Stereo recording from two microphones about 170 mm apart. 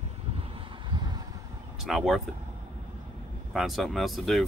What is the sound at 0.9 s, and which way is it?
Vehicle, 25° right (ahead or behind).